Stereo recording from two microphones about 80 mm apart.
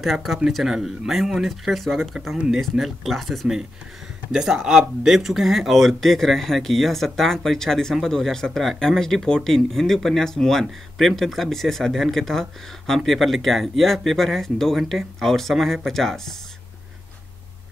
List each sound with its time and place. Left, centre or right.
0.0 s speech: centre
2.3 s speech: centre
2.6 s speech: centre